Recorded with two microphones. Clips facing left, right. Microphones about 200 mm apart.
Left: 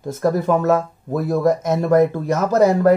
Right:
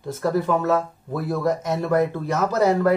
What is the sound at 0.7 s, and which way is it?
Speech, 45° left (ahead or behind).